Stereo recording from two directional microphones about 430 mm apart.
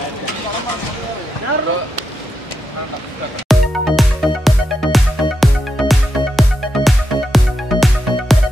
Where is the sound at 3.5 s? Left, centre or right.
Centre.